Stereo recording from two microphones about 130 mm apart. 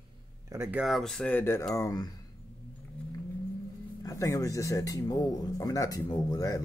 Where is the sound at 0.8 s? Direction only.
Centre (ahead or behind); by 1.6 s 15° left (ahead or behind).